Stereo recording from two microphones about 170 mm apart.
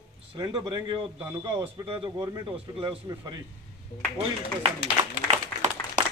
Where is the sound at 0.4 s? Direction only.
30° right (ahead or behind).